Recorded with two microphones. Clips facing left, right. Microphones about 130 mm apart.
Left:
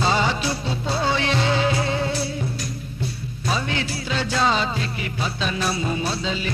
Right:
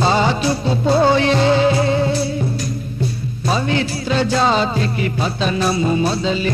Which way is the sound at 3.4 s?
35° right (ahead or behind).